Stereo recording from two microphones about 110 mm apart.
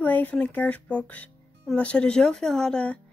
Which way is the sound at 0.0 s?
15° left (ahead or behind).